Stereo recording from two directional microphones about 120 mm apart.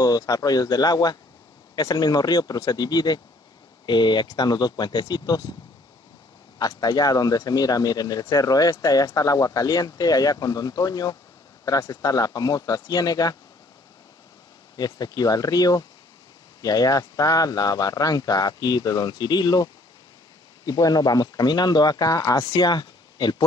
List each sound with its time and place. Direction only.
0.0 s speech: 30° left (ahead or behind)
6.6 s speech: 35° left (ahead or behind)
14.8 s speech: 35° left (ahead or behind)